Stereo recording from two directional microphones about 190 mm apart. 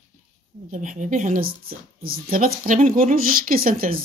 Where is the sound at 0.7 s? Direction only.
40° right (ahead or behind).